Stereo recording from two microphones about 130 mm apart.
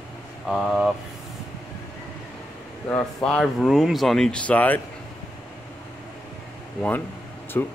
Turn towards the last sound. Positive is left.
turn(degrees=20)  # may be behind; listen again after turning